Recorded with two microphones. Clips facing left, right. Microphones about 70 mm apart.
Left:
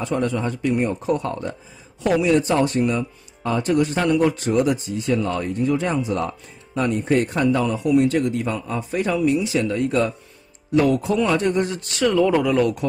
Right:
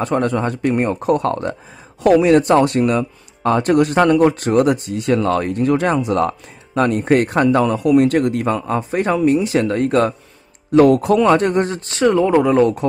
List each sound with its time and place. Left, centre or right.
0.0 s speech: right
2.0 s speech: right